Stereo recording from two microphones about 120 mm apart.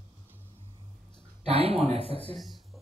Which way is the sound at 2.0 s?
45° left (ahead or behind).